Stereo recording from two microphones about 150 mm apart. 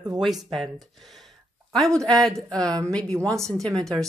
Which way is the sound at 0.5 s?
Centre (ahead or behind).